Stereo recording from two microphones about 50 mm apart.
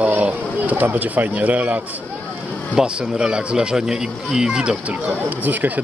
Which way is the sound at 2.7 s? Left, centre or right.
Centre.